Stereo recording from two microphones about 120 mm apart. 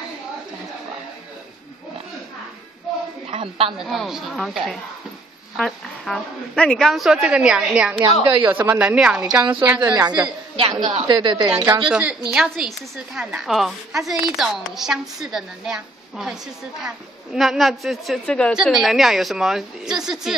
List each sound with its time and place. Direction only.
3.3 s a woman's voice: 50° right (ahead or behind)
3.7 s a woman's voice: centre (ahead or behind)
8.0 s a woman's voice: 45° right (ahead or behind)
8.5 s a woman's voice: 15° right (ahead or behind)
9.8 s a woman's voice: 35° right (ahead or behind)
11.5 s a woman's voice: 10° right (ahead or behind)
12.4 s a woman's voice: centre (ahead or behind)